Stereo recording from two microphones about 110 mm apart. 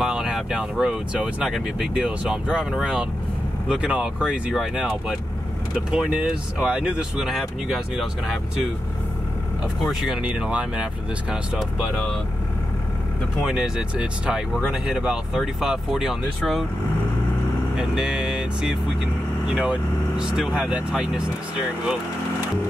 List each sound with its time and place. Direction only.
0.0 s speech: 5° right (ahead or behind)
9.8 s speech: 5° right (ahead or behind)
13.4 s speech: 5° right (ahead or behind)
17.7 s speech: 5° right (ahead or behind)